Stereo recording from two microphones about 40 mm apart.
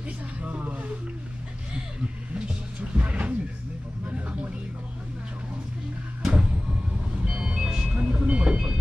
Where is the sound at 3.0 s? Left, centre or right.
Right.